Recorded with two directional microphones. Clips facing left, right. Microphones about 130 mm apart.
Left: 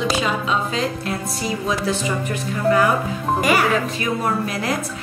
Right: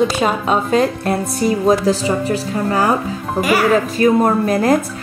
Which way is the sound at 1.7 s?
35° right (ahead or behind).